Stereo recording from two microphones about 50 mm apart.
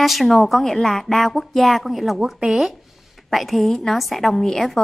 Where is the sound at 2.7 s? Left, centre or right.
Centre.